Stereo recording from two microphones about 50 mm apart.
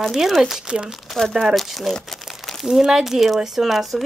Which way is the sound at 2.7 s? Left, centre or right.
Centre.